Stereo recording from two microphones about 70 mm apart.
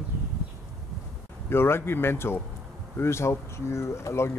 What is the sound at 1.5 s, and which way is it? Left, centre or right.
Speech, left.